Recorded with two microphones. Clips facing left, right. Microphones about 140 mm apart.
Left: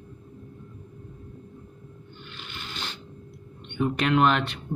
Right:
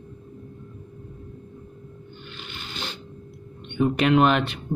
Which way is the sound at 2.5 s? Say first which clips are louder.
Right 2 dB; 20° right (ahead or behind).